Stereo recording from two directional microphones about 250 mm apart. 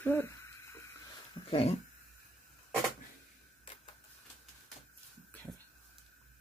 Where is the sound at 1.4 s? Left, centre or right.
Left.